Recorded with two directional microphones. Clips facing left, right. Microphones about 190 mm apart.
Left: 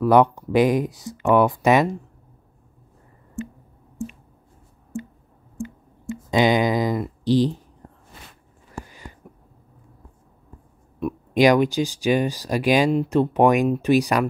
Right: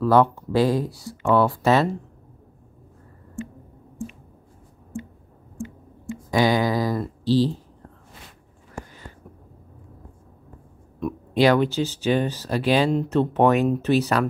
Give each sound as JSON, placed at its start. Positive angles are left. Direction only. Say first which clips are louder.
{"t": 0.0, "sound": "speech", "louder": "left 2 dB", "side_deg": 15}
{"t": 6.3, "sound": "a sound", "louder": "left 2 dB", "side_deg": 20}
{"t": 11.0, "sound": "speech", "louder": "left 2 dB", "side_deg": 10}